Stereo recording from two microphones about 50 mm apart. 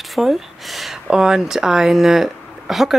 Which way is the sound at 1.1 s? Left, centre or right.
Centre.